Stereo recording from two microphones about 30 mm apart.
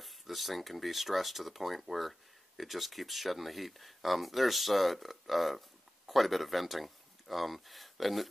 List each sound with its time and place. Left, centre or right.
0.0 s speech: centre